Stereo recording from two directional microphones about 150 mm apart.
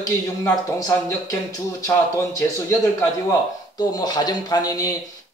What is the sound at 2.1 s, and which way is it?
Speech, 15° left (ahead or behind).